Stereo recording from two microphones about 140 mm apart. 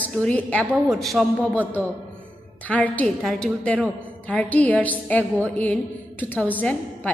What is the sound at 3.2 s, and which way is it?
A woman's voice, centre (ahead or behind).